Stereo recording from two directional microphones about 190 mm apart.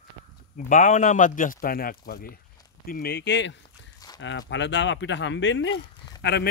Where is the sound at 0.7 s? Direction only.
40° left (ahead or behind); by 5.8 s 75° left (ahead or behind).